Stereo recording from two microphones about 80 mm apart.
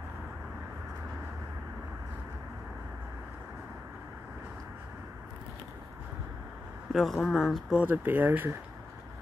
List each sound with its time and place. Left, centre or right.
6.9 s speech: centre
7.8 s speech: right